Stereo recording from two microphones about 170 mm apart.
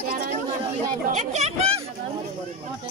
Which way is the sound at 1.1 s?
40° right (ahead or behind).